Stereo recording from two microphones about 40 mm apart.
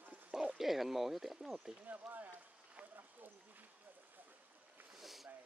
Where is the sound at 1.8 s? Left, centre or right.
Right.